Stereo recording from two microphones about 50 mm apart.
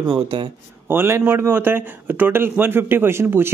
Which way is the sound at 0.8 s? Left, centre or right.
Right.